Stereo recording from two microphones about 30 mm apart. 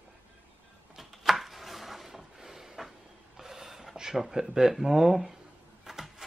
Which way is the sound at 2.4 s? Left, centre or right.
Centre.